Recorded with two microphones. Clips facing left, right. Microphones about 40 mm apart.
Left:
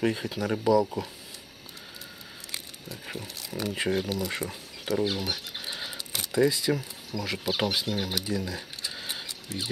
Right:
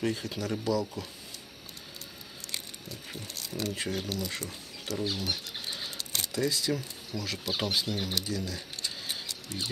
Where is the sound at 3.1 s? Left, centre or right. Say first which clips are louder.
Left 3 dB; centre.